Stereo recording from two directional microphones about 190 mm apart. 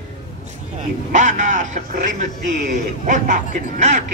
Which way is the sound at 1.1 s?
40° right (ahead or behind).